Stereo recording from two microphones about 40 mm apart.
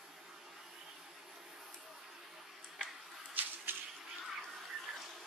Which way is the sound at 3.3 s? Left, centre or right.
Right.